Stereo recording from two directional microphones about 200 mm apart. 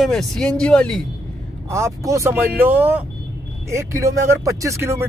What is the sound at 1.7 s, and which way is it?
Speech, 15° right (ahead or behind).